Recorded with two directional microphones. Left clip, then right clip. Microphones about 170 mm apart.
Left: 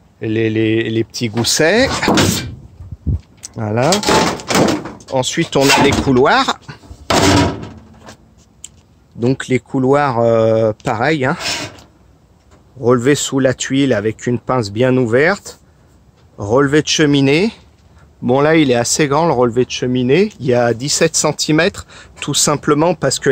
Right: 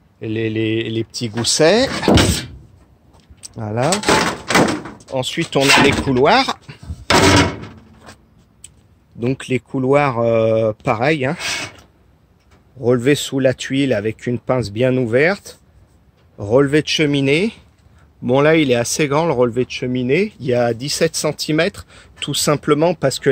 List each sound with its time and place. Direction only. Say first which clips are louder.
0.2 s speech: left 5 dB; 10° right (ahead or behind)
3.3 s speech: left 4 dB; 5° left (ahead or behind)
3.9 s a sound: left 1 dB; 5° right (ahead or behind)
4.6 s door: even; 20° right (ahead or behind)
4.8 s door: left 4 dB; 35° right (ahead or behind)
5.1 s speech: left 3 dB; 5° right (ahead or behind)
9.2 s speech: left 4 dB; 5° right (ahead or behind)
11.3 s speech: left 2 dB; 5° left (ahead or behind)
12.8 s speech: left 3 dB; 15° right (ahead or behind)
16.9 s speech: left 3 dB; centre (ahead or behind)